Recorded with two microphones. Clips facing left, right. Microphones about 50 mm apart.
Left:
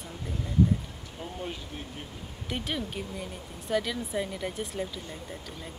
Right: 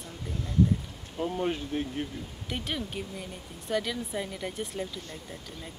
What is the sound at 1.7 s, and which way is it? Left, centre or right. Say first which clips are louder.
Speech: right 9 dB; right.